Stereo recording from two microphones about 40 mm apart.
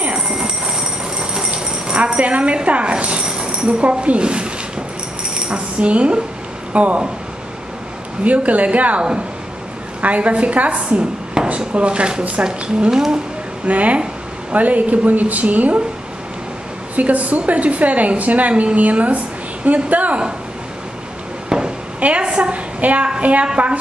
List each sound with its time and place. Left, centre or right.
0.4 s jingle bell: centre
3.8 s speech: right
5.5 s speech: right
8.2 s a woman's voice: right
10.0 s a woman's voice: right
13.7 s a woman's voice: right
16.9 s a woman's voice: right
21.5 s a sound: centre
22.0 s a woman's voice: right
23.4 s speech: right